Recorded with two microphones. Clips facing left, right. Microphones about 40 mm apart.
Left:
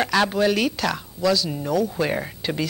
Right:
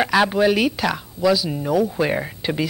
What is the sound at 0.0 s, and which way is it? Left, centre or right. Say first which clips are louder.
Speech: right 3 dB; centre.